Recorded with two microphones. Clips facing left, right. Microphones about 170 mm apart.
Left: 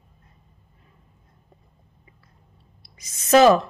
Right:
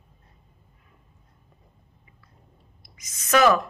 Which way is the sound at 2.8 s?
30° left (ahead or behind).